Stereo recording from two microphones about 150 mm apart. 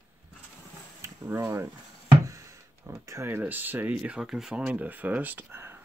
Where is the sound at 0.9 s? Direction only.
20° right (ahead or behind).